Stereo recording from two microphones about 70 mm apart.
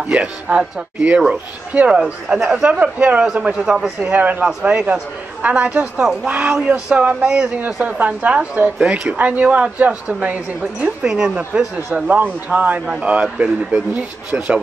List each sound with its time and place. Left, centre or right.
0.0 s speech: centre
1.9 s speech: centre
3.5 s speech: centre
4.1 s speech: right
11.7 s speech: right